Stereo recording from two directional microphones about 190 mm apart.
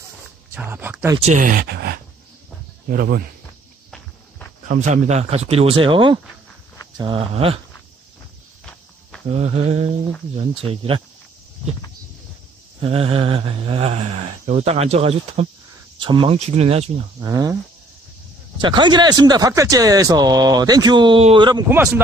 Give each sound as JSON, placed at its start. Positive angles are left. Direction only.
{"t": 0.6, "sound": "speech", "side_deg": -10}
{"t": 1.2, "sound": "speech", "side_deg": -45}
{"t": 4.6, "sound": "speech", "side_deg": -40}
{"t": 9.3, "sound": "speech", "side_deg": -35}
{"t": 12.8, "sound": "speech", "side_deg": -30}
{"t": 17.2, "sound": "speech", "side_deg": -20}
{"t": 18.6, "sound": "speech", "side_deg": -25}
{"t": 21.6, "sound": "speech", "side_deg": -10}